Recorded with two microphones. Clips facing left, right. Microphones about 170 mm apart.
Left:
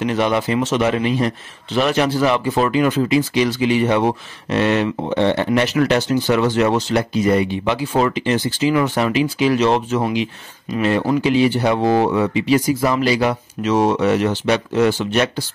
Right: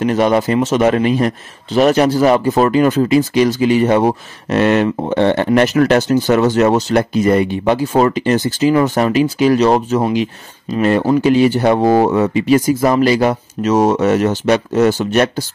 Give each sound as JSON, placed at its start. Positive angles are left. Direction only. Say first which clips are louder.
{"t": 0.0, "sound": "speech", "louder": "right 5 dB", "side_deg": -45}